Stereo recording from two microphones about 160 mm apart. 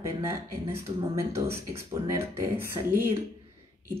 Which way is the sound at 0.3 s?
15° right (ahead or behind).